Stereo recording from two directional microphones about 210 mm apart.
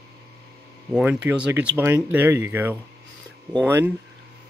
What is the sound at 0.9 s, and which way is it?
Speech, 5° right (ahead or behind).